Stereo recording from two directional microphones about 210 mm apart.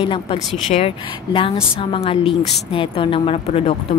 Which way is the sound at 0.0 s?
25° left (ahead or behind).